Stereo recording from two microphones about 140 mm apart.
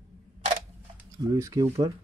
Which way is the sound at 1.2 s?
20° right (ahead or behind).